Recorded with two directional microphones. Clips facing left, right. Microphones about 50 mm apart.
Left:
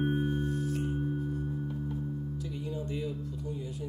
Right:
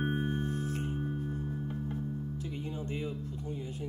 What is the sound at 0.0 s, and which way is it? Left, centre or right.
Music, right.